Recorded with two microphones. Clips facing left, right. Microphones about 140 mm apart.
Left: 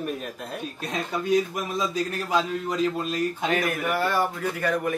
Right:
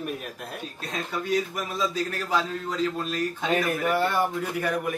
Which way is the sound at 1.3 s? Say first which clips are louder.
Left 4 dB; 20° left (ahead or behind).